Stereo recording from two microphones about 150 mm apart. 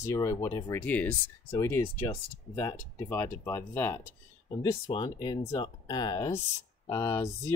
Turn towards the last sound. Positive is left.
turn(degrees=20)  # may be behind; listen again after turning